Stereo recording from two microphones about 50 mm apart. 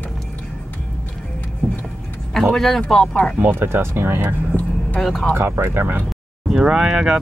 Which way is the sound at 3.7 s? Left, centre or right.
Right.